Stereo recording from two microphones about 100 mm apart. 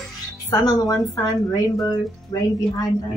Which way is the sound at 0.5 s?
40° left (ahead or behind).